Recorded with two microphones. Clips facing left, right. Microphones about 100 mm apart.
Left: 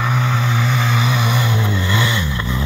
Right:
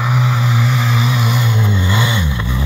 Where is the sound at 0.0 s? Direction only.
5° right (ahead or behind).